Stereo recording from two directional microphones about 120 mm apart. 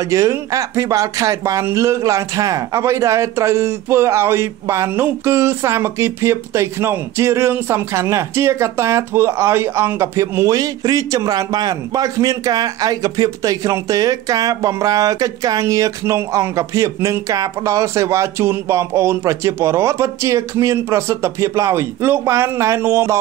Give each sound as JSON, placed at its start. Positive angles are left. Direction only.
{"t": 0.0, "sound": "speech", "side_deg": -25}